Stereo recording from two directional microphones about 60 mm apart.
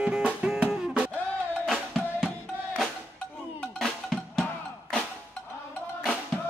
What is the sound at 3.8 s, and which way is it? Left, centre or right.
Music, centre.